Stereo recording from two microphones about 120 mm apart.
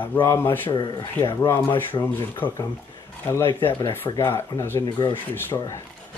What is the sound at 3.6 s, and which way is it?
Speech, 25° left (ahead or behind).